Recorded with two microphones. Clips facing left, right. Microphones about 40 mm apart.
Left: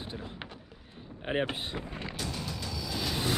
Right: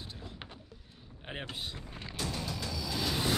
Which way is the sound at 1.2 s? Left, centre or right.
Left.